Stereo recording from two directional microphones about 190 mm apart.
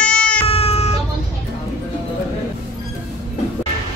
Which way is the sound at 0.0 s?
5° left (ahead or behind).